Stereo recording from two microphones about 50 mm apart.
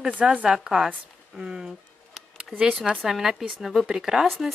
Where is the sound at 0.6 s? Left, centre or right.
Centre.